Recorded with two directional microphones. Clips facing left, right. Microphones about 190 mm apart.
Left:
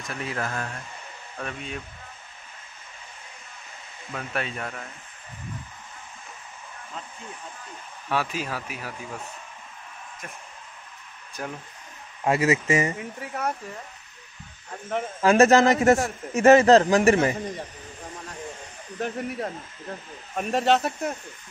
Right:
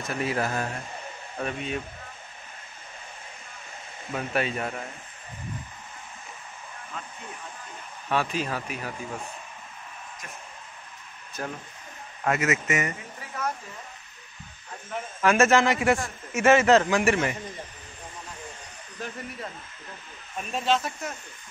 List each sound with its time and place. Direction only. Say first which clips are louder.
0.2 s speech: right 3 dB; 5° right (ahead or behind)
4.1 s speech: right 4 dB; 10° right (ahead or behind)
8.1 s speech: right 1 dB; 5° left (ahead or behind)
11.4 s speech: even; 10° left (ahead or behind)
12.3 s a man's voice: left 4 dB; 30° left (ahead or behind)
15.1 s a man's voice: left 4 dB; 35° left (ahead or behind)
18.9 s speech: left 7 dB; 60° left (ahead or behind)